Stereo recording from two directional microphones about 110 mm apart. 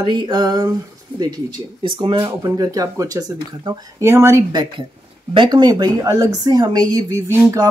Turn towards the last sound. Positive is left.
turn(degrees=-30)  # may be behind; listen again after turning